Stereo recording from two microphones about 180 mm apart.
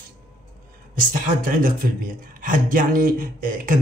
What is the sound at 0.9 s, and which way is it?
Speech, 50° right (ahead or behind).